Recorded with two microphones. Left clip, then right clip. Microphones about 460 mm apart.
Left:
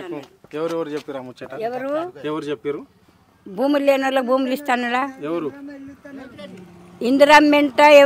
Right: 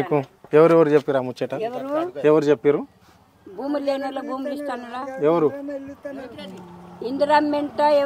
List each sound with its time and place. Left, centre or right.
0.1 s speech: right
1.2 s speech: right
1.6 s speech: left
2.2 s speech: right
3.5 s a man's voice: left
5.2 s a man's voice: centre
7.0 s a woman's voice: left